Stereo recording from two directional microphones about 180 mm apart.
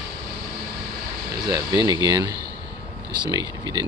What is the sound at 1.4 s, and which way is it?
Speech, 20° right (ahead or behind).